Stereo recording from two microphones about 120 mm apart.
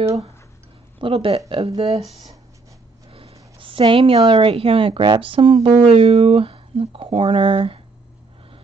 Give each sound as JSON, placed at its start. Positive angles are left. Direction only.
{"t": 0.9, "sound": "speech", "side_deg": -50}
{"t": 3.1, "sound": "printer", "side_deg": -50}
{"t": 3.5, "sound": "a woman's voice", "side_deg": -45}